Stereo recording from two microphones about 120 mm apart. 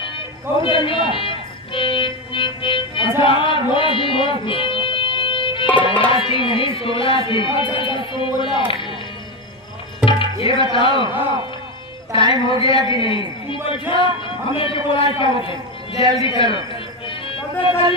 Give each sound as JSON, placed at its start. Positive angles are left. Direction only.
{"t": 0.0, "sound": "speech", "side_deg": 45}
{"t": 10.0, "sound": "speech", "side_deg": 50}
{"t": 12.2, "sound": "speech", "side_deg": -35}
{"t": 12.6, "sound": "speech", "side_deg": 45}
{"t": 16.2, "sound": "music", "side_deg": 45}